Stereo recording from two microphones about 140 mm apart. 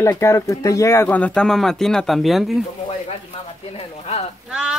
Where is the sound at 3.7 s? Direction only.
50° left (ahead or behind).